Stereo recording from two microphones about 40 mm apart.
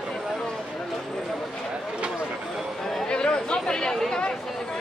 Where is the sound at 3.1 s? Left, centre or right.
Left.